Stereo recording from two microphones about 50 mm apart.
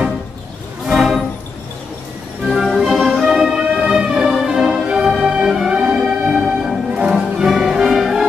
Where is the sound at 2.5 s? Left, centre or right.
Centre.